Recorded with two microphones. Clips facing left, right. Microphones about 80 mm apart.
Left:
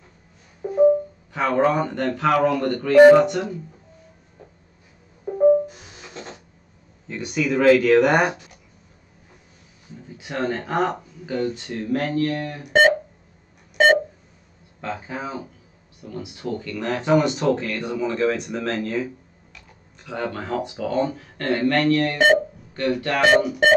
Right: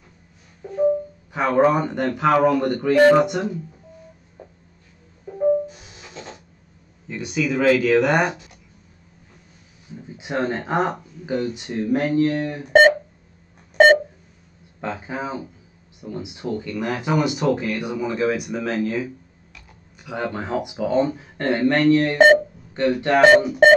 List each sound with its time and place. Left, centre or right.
0.7 s music: centre
1.3 s speech: centre
5.3 s music: left
7.1 s speech: centre
10.0 s speech: centre
14.8 s speech: centre